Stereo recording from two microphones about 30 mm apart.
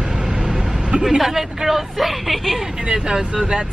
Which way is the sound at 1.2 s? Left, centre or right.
Centre.